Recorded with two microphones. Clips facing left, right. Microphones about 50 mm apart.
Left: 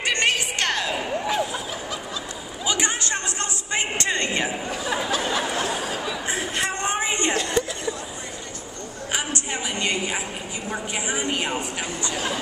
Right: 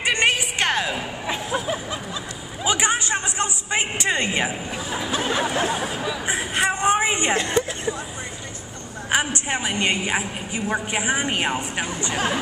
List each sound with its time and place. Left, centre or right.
0.0 s music: centre
1.2 s a sound: right
9.1 s a woman's voice: right